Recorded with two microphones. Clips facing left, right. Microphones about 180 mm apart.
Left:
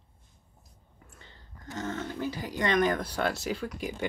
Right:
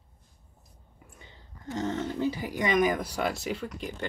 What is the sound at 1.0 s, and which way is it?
Speech, 15° right (ahead or behind).